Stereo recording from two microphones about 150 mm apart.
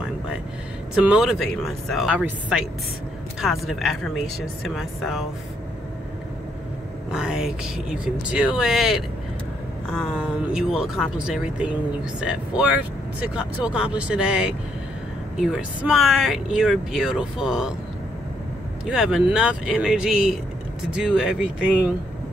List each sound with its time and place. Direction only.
1.0 s speech: 5° right (ahead or behind)
2.1 s speech: 10° right (ahead or behind)
7.1 s speech: 5° right (ahead or behind)
18.9 s speech: 5° right (ahead or behind)